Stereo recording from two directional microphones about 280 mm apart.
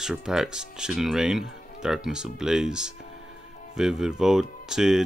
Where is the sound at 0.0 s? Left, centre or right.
Centre.